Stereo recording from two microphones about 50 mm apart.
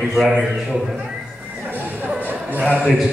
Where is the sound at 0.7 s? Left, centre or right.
Centre.